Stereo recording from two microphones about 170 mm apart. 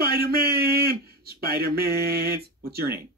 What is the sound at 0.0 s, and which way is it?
A man's voice, 65° right (ahead or behind).